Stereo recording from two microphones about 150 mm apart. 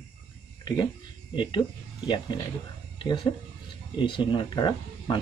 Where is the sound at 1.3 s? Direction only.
30° left (ahead or behind).